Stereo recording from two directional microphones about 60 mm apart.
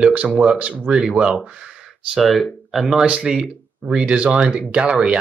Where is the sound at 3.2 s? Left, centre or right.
Centre.